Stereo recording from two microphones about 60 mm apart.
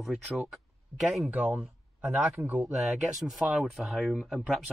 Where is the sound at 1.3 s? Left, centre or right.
Right.